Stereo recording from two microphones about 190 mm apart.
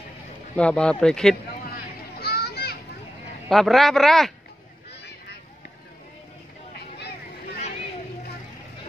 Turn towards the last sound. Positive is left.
turn(degrees=60)  # may be behind; listen again after turning